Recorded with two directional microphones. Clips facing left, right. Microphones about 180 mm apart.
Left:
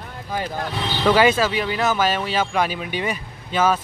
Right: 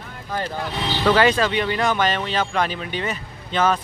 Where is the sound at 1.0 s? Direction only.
10° left (ahead or behind).